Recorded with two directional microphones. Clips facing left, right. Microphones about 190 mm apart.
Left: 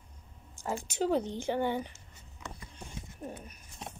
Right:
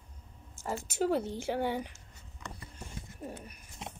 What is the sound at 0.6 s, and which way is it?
Speech, centre (ahead or behind).